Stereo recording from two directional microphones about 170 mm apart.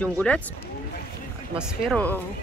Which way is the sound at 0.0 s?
10° left (ahead or behind).